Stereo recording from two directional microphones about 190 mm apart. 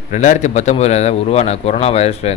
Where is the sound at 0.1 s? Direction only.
40° left (ahead or behind).